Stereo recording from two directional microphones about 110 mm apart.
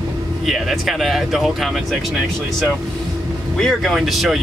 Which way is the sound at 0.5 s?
Centre (ahead or behind).